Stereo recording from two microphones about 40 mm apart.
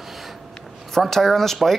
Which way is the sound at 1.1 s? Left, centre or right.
Centre.